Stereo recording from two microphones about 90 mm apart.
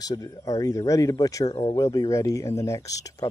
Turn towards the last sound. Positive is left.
turn(degrees=40)  # may be behind; listen again after turning